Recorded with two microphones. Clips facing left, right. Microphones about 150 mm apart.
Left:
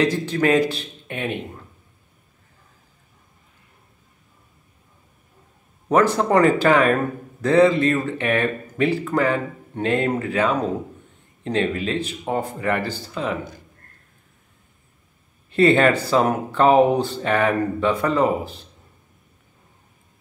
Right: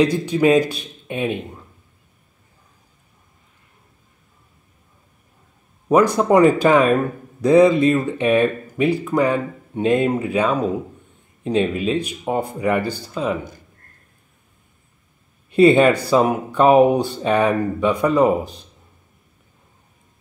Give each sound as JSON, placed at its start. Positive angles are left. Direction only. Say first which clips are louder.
{"t": 0.0, "sound": "speech", "louder": "right 3 dB", "side_deg": -15}
{"t": 5.9, "sound": "speech", "louder": "right 3 dB", "side_deg": -15}
{"t": 15.5, "sound": "speech", "louder": "right 3 dB", "side_deg": -15}